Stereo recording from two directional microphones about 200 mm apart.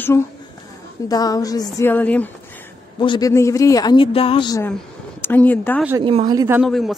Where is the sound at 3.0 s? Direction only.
20° left (ahead or behind).